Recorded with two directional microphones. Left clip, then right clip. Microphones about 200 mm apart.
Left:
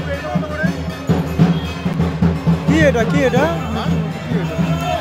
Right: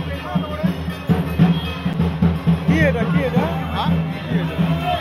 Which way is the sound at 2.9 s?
50° left (ahead or behind).